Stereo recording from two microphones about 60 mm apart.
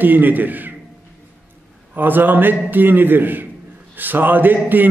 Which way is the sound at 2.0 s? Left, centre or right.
Right.